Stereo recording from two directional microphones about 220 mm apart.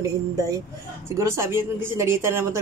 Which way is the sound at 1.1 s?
10° right (ahead or behind).